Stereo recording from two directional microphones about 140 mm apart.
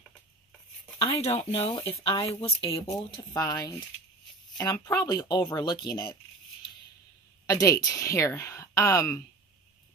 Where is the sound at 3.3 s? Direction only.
25° left (ahead or behind).